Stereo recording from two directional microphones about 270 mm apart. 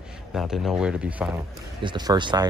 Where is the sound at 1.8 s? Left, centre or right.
Centre.